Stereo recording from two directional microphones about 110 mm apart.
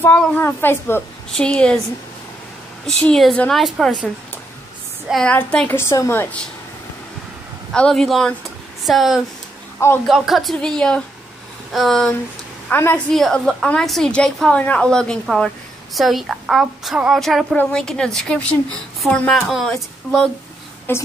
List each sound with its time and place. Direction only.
0.0 s a woman's voice: 15° left (ahead or behind)
1.3 s a woman's voice: 5° left (ahead or behind)
2.9 s a woman's voice: 5° left (ahead or behind)
5.1 s a woman's voice: 10° left (ahead or behind)
5.7 s a woman's voice: 25° left (ahead or behind)
7.7 s a woman's voice: 5° left (ahead or behind)
12.7 s a woman's voice: 20° left (ahead or behind)
13.1 s a woman's voice: 5° left (ahead or behind)
20.9 s a woman's voice: 20° left (ahead or behind)